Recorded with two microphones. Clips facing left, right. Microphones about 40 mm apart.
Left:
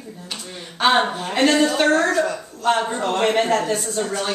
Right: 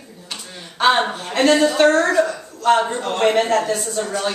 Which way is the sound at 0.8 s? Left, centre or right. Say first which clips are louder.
Right 1 dB; centre.